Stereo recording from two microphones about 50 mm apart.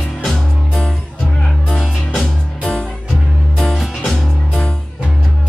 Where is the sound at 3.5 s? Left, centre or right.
Centre.